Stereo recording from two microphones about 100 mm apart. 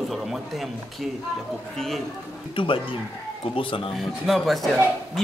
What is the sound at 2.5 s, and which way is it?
Speech, 60° left (ahead or behind).